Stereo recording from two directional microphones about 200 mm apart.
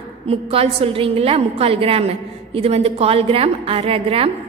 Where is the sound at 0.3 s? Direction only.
30° right (ahead or behind).